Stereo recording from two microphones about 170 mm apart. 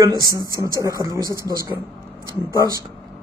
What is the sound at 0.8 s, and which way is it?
Speech, 20° right (ahead or behind).